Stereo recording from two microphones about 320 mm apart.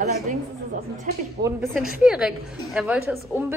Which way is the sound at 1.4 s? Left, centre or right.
Centre.